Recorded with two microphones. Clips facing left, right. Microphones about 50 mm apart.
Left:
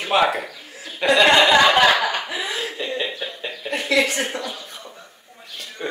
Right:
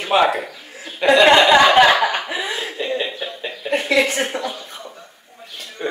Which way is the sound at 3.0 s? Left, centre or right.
Centre.